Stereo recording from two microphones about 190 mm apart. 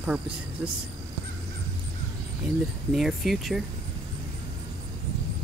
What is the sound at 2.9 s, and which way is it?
Speech, centre (ahead or behind).